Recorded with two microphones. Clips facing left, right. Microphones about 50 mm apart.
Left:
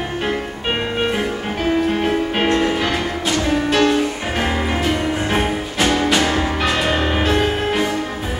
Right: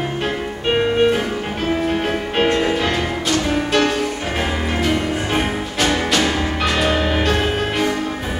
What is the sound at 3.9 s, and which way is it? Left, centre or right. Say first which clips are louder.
Music: left 2 dB; centre.